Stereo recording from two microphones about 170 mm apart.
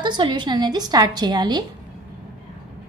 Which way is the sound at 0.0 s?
25° right (ahead or behind).